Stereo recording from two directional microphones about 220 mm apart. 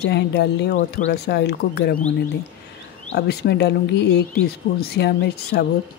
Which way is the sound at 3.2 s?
50° left (ahead or behind).